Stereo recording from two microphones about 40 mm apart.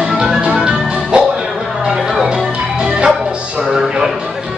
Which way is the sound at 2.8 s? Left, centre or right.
Right.